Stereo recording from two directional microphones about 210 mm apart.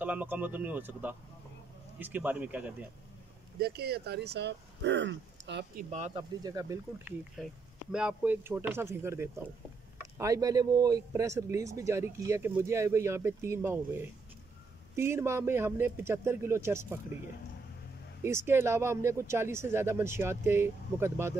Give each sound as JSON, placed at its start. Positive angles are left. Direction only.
{"t": 0.0, "sound": "speech", "side_deg": -10}
{"t": 3.5, "sound": "speech", "side_deg": -50}
{"t": 5.9, "sound": "speech", "side_deg": -30}
{"t": 6.4, "sound": "speech", "side_deg": -15}
{"t": 7.4, "sound": "speech", "side_deg": 0}
{"t": 18.5, "sound": "speech", "side_deg": -10}